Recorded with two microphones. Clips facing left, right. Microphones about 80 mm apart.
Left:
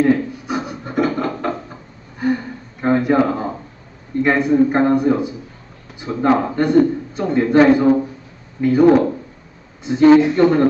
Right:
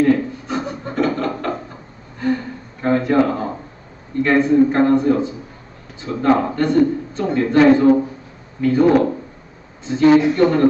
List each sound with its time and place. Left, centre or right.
0.0 s a sound: centre
2.1 s gasp: centre
4.2 s a man's voice: centre